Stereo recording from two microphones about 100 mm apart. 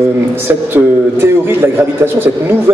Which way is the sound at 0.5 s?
25° right (ahead or behind).